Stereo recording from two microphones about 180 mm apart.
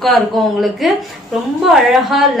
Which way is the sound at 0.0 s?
Centre (ahead or behind).